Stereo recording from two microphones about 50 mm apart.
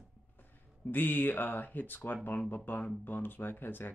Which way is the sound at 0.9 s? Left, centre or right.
Left.